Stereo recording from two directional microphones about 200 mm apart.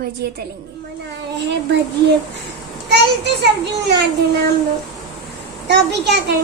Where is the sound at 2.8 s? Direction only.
55° right (ahead or behind).